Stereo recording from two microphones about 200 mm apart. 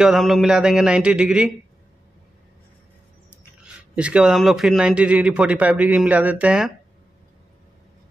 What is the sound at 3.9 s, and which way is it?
A man's voice, 5° right (ahead or behind).